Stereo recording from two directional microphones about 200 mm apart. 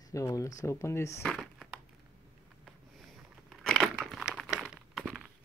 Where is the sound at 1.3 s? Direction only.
Centre (ahead or behind).